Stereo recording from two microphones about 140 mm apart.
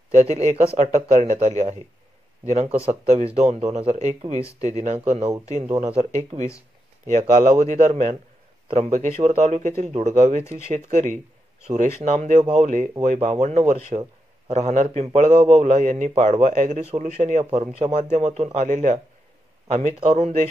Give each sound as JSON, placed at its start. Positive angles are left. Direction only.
{"t": 0.1, "sound": "a man's voice", "side_deg": -50}
{"t": 2.8, "sound": "a man's voice", "side_deg": -50}
{"t": 7.1, "sound": "a man's voice", "side_deg": -60}